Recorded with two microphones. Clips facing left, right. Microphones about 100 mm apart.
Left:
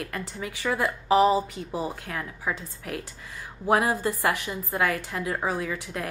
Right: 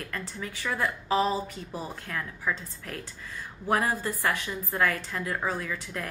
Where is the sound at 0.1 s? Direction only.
15° left (ahead or behind).